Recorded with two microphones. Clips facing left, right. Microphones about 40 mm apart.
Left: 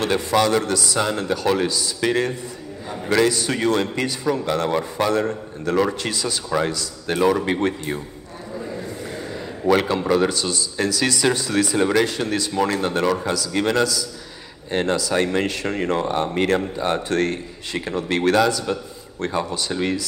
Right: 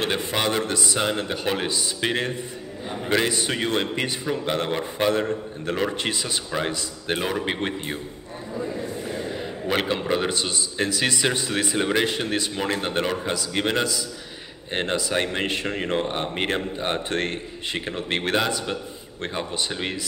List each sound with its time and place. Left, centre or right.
0.0 s speech: right
9.7 s speech: right